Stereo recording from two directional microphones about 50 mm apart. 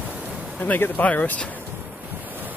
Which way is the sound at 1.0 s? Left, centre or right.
Left.